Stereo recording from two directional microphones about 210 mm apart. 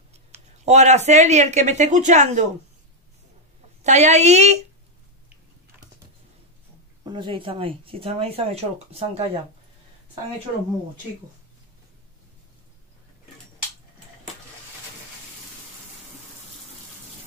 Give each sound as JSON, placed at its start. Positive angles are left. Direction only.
{"t": 0.3, "sound": "speech", "side_deg": -30}
{"t": 3.8, "sound": "speech", "side_deg": -35}
{"t": 7.1, "sound": "speech", "side_deg": -25}